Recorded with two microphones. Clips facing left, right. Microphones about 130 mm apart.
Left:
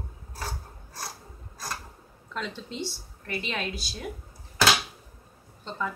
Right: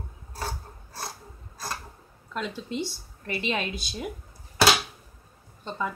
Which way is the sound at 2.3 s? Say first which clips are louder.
Right 3 dB; 5° right (ahead or behind).